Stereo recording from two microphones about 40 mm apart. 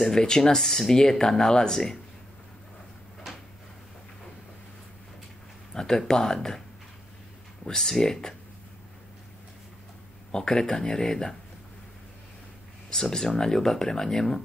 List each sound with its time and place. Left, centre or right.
0.1 s speech: centre
5.8 s speech: centre
7.6 s speech: centre
10.3 s speech: centre
12.9 s speech: centre